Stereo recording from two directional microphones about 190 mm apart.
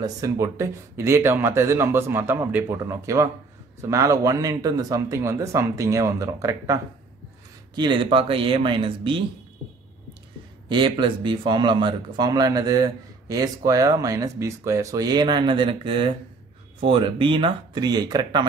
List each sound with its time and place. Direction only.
0.0 s speech: 15° right (ahead or behind)
10.7 s speech: 25° right (ahead or behind)